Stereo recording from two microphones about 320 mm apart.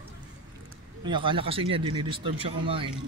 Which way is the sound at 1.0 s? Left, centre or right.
Centre.